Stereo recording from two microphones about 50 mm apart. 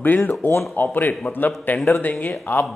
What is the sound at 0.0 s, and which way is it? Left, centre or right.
Speech, left.